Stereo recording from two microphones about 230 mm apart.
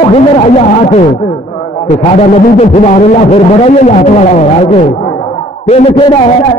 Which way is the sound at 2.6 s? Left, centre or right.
Left.